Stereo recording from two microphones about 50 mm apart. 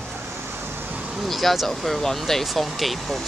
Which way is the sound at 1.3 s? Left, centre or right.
Centre.